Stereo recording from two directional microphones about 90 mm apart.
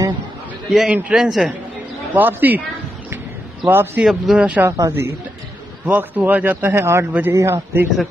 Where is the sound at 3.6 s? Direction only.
25° right (ahead or behind).